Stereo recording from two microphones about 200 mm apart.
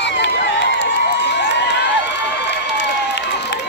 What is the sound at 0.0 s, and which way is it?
Crowd, 60° left (ahead or behind).